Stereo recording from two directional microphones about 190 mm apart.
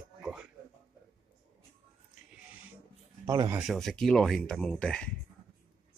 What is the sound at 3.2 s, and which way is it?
Speech, 20° right (ahead or behind).